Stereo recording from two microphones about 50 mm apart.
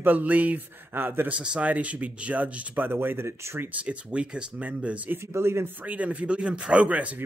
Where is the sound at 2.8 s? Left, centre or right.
Right.